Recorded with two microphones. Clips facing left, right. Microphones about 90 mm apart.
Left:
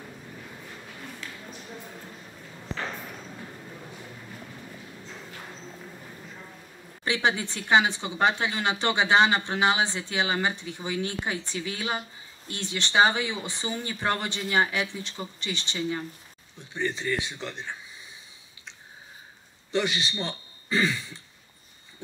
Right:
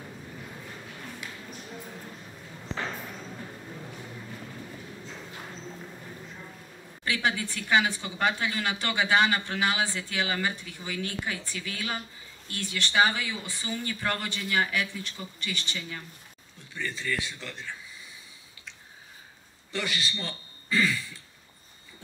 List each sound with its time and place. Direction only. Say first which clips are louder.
7.1 s speech: left 3 dB; 25° left (ahead or behind)
19.7 s speech: left 5 dB; 20° left (ahead or behind)